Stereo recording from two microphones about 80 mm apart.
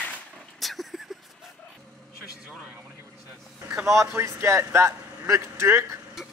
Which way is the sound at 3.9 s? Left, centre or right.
Right.